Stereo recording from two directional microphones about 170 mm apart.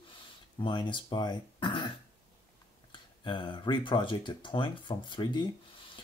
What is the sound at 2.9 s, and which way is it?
Speech, 25° left (ahead or behind).